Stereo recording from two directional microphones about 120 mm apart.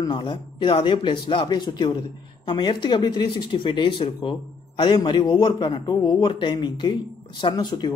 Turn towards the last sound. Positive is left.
turn(degrees=40)  # may be behind; listen again after turning